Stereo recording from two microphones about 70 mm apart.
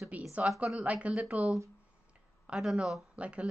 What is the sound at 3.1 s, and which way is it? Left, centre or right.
Speech, centre.